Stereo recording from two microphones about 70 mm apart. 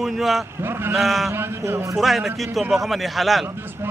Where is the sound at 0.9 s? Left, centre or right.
Centre.